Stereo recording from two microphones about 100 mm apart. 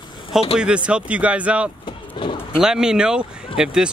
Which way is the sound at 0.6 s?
10° right (ahead or behind).